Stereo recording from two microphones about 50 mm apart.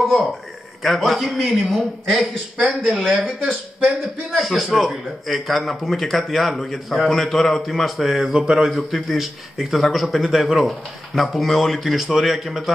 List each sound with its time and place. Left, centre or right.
0.8 s speech: centre
4.4 s speech: centre
8.4 s speech: centre
8.6 s speech: centre